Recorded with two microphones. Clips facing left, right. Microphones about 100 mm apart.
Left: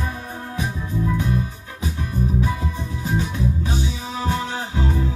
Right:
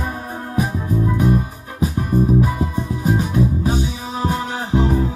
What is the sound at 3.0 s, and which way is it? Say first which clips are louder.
Music: right 5 dB; 40° right (ahead or behind).